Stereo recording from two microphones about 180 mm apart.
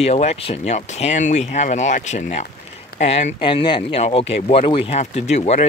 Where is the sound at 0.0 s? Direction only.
35° left (ahead or behind).